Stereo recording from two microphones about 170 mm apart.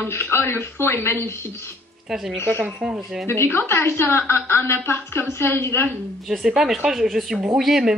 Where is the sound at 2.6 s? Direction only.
5° right (ahead or behind).